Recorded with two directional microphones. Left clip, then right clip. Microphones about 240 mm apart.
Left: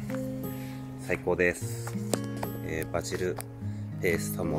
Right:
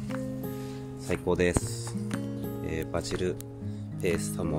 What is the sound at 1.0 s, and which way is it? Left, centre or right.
Speech, centre.